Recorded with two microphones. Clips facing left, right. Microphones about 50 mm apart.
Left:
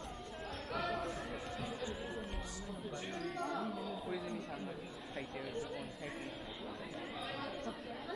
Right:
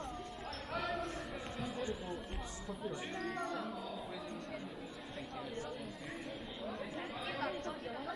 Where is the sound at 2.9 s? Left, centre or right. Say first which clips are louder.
Left 1 dB; centre.